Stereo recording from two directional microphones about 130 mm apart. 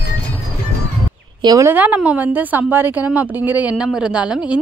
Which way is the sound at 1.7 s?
10° right (ahead or behind).